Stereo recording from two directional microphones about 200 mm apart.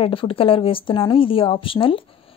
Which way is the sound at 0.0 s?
25° left (ahead or behind).